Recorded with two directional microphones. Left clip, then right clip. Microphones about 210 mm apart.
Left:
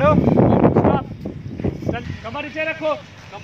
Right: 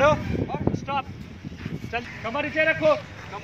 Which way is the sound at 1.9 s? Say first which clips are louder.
Even; 15° right (ahead or behind).